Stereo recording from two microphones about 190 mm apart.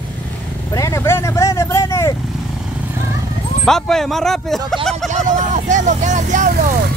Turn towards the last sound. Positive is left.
turn(degrees=-40)  # may be behind; listen again after turning